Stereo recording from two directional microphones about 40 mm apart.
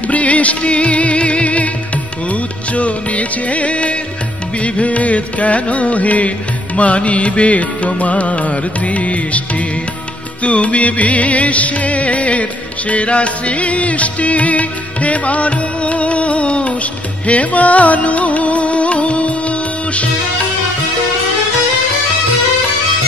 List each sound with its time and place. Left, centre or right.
0.1 s music: left
2.7 s music: left
10.4 s music: left
12.9 s music of bollywood: left
17.3 s music: left